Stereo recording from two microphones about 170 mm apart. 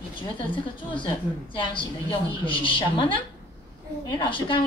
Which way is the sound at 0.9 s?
30° left (ahead or behind).